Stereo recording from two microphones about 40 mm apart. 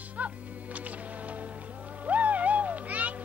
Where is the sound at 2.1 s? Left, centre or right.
Right.